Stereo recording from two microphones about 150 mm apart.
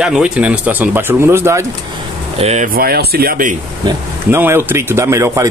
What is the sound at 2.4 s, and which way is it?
Speech, 45° right (ahead or behind).